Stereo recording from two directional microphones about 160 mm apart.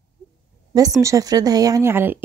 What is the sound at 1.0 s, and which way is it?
Speech, 20° right (ahead or behind).